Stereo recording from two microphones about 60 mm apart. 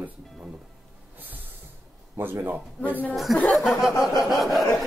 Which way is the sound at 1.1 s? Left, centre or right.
Right.